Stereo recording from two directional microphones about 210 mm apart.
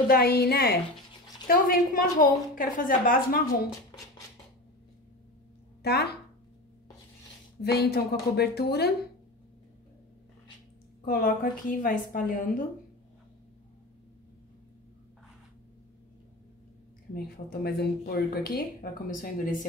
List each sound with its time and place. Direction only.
0.1 s a woman's voice: 50° left (ahead or behind)
5.8 s a sound: 50° left (ahead or behind)
7.6 s speech: 50° left (ahead or behind)
11.1 s a woman's voice: 40° left (ahead or behind)
17.1 s speech: 50° left (ahead or behind)